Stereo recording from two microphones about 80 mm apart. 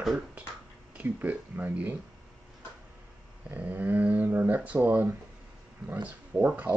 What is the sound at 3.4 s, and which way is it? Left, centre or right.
Speech, right.